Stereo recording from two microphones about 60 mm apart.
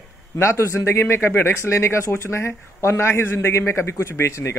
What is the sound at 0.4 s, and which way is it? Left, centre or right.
A man's voice, left.